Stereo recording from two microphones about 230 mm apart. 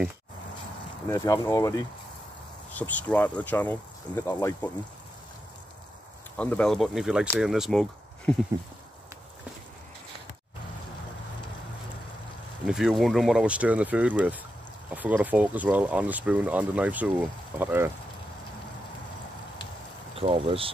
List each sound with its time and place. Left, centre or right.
1.0 s speech: centre
6.3 s speech: centre
12.6 s speech: centre
20.2 s speech: right